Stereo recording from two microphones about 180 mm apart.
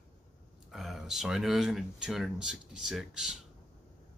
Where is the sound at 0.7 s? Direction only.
Centre (ahead or behind).